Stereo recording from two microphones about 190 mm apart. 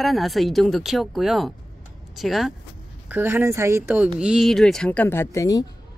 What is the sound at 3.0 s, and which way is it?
Speech, 10° right (ahead or behind).